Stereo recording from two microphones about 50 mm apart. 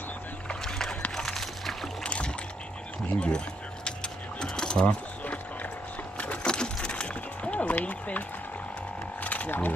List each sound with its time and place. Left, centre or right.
0.5 s rowboat: centre
1.1 s a sound: centre
2.0 s ratchet: left
3.2 s keys jangling: centre
4.8 s a sound: left
9.2 s wild animals: left